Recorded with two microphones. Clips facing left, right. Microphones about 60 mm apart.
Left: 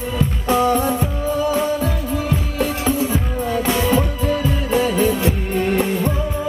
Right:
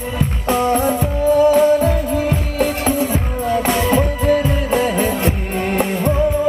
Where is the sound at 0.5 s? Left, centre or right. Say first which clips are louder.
Right 1 dB; right.